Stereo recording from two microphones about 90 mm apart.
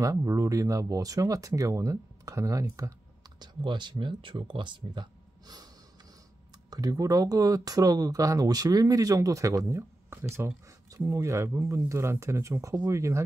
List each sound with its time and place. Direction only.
0.0 s speech: 40° right (ahead or behind)
3.3 s speech: 60° right (ahead or behind)
6.7 s speech: 40° right (ahead or behind)